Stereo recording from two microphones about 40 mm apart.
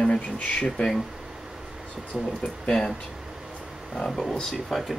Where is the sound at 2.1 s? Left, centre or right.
Centre.